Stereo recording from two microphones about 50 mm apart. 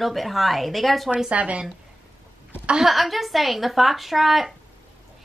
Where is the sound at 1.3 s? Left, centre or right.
Right.